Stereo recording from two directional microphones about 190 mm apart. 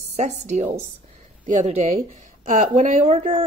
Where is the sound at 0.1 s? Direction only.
35° right (ahead or behind).